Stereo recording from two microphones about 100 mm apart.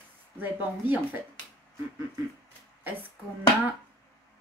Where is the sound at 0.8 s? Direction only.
20° right (ahead or behind).